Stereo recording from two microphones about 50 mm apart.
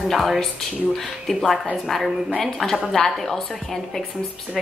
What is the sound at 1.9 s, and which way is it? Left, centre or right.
Speech, centre.